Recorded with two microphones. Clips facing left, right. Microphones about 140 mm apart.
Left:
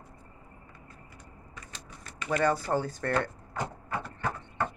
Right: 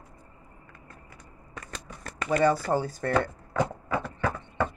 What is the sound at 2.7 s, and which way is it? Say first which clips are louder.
Speech: right 3 dB; 10° right (ahead or behind).